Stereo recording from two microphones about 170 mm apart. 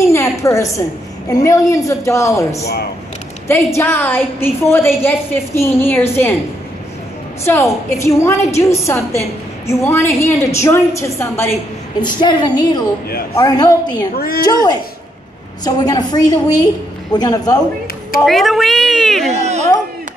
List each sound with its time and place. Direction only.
0.0 s a sound: 15° left (ahead or behind)
1.3 s a woman's voice: 20° left (ahead or behind)
7.4 s a woman's voice: 15° left (ahead or behind)
12.0 s a woman's voice: 25° left (ahead or behind)
14.1 s a woman's voice: 60° left (ahead or behind)
14.4 s a woman's voice: 25° left (ahead or behind)
18.2 s speech: centre (ahead or behind)
19.3 s a sound: 40° right (ahead or behind)